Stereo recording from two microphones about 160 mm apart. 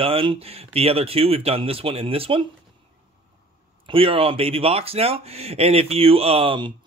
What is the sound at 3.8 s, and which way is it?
Speech, 35° right (ahead or behind).